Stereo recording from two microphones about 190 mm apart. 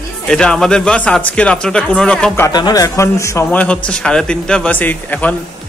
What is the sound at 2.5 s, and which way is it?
A man's voice, 20° left (ahead or behind).